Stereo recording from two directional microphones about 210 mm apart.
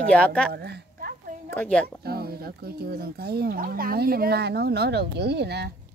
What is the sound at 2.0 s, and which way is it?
Speech, 50° right (ahead or behind).